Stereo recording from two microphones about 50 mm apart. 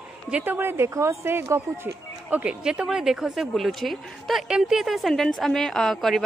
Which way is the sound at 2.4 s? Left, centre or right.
Right.